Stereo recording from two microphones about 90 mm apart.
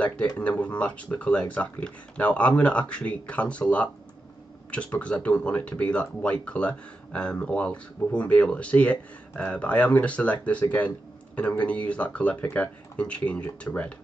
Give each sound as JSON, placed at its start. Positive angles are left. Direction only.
{"t": 0.4, "sound": "speech", "side_deg": 15}